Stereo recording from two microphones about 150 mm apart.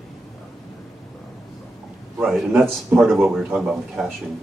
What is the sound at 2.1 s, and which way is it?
Speech, centre (ahead or behind).